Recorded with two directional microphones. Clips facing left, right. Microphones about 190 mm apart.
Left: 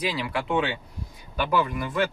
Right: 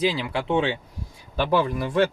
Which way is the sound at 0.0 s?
25° right (ahead or behind).